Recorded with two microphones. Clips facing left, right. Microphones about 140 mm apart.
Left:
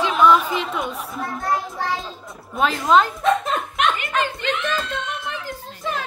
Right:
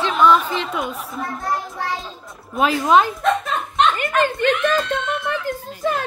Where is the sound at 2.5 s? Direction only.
5° right (ahead or behind).